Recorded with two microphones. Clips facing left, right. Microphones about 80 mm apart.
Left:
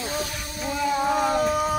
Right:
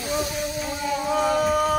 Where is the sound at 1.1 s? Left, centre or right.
Centre.